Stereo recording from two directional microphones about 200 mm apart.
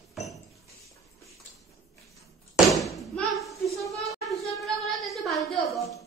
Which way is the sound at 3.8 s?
Centre (ahead or behind).